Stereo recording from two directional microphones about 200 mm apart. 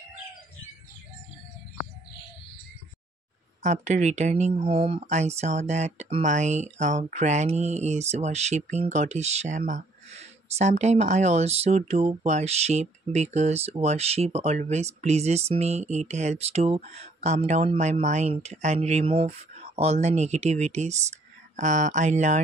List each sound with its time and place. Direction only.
3.6 s speech: 35° right (ahead or behind)